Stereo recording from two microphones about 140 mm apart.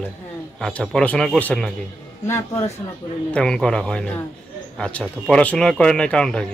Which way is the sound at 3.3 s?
5° left (ahead or behind).